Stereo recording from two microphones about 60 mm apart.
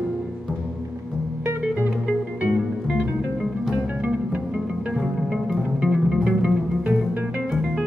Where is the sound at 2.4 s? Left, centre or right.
Right.